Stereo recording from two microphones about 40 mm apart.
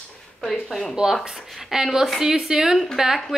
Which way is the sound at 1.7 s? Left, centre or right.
Centre.